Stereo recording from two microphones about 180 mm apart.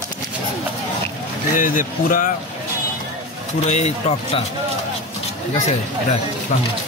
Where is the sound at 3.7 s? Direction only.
40° left (ahead or behind).